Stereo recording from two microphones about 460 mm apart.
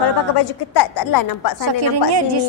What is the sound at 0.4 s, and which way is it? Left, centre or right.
A woman's voice, left.